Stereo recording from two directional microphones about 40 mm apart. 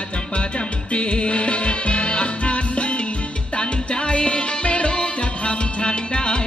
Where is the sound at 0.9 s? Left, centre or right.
Left.